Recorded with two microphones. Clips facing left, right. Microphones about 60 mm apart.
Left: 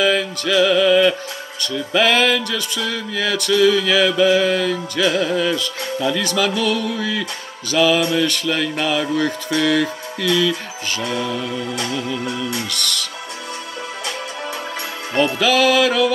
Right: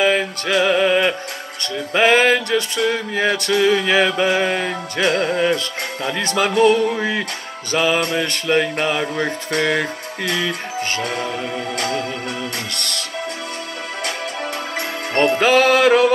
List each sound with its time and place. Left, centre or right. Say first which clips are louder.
0.0 s music: even; right
5.0 s music: right 1 dB; right
6.0 s music: even; right
8.1 s speech: even; right
9.6 s music: left 2 dB; right
15.1 s music: right 2 dB; right